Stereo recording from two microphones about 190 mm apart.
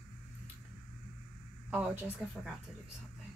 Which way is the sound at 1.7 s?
5° right (ahead or behind).